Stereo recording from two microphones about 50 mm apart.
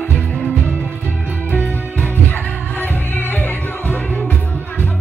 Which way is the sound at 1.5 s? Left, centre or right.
Left.